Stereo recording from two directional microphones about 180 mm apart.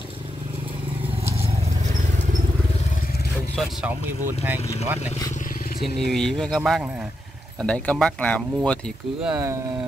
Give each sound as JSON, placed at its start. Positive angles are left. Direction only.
{"t": 1.2, "sound": "vehicle", "side_deg": -35}
{"t": 3.5, "sound": "speech", "side_deg": -10}
{"t": 5.8, "sound": "speech", "side_deg": 0}
{"t": 9.3, "sound": "speech", "side_deg": -15}